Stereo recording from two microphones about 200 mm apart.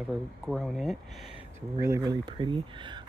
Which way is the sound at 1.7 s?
15° right (ahead or behind).